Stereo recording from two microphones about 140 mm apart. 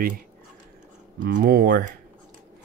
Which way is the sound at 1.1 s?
90° right.